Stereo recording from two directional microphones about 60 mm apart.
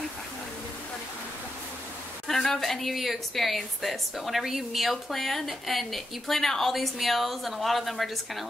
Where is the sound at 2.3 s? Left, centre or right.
Centre.